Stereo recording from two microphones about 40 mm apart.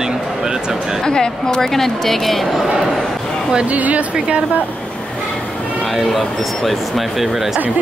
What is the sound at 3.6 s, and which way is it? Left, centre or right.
Speech, right.